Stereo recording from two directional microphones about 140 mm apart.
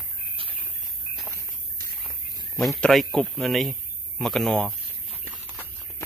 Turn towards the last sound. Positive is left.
turn(degrees=0)  # may be behind; listen again after turning